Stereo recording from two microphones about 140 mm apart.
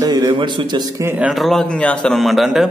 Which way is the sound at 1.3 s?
Centre (ahead or behind).